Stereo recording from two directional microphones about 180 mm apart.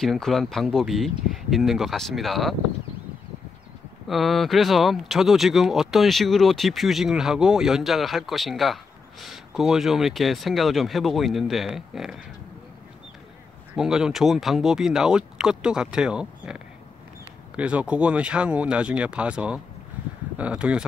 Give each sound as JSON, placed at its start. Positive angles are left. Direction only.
{"t": 0.0, "sound": "speech", "side_deg": 0}
{"t": 4.1, "sound": "speech", "side_deg": 0}
{"t": 13.7, "sound": "speech", "side_deg": -5}